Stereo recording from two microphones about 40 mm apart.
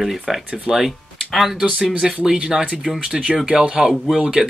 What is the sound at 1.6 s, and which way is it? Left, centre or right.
Speech, right.